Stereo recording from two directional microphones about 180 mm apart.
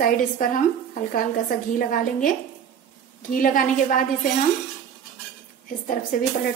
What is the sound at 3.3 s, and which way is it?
Speech, 50° left (ahead or behind).